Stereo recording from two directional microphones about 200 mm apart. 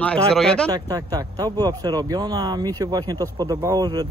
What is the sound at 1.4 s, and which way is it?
Speech, 20° right (ahead or behind).